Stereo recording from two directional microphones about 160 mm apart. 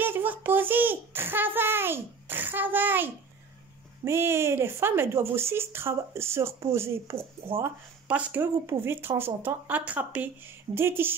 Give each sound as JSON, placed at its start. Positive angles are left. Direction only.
{"t": 0.0, "sound": "speech", "side_deg": -10}